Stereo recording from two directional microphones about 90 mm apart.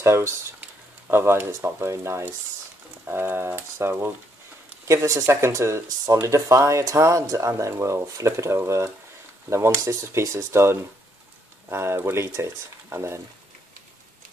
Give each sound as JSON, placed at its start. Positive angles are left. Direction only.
{"t": 0.0, "sound": "speech", "side_deg": -30}